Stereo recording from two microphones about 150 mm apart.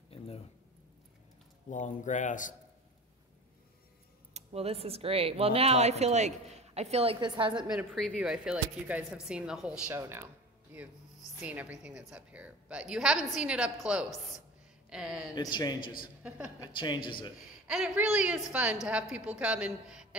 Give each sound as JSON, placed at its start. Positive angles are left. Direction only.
{"t": 1.7, "sound": "a man's voice", "side_deg": 55}
{"t": 4.3, "sound": "speech", "side_deg": -45}
{"t": 7.7, "sound": "a woman's voice", "side_deg": 5}
{"t": 15.3, "sound": "a man's voice", "side_deg": 30}
{"t": 16.2, "sound": "speech", "side_deg": -10}
{"t": 16.5, "sound": "a man's voice", "side_deg": 25}
{"t": 17.6, "sound": "speech", "side_deg": -5}